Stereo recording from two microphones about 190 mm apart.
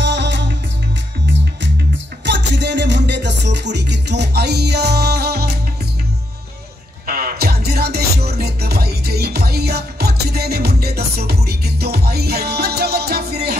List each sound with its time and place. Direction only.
0.0 s music: 65° right (ahead or behind)
2.2 s music: 65° right (ahead or behind)
7.1 s music: 50° right (ahead or behind)